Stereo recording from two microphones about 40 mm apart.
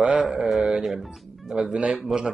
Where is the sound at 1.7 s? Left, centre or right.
Right.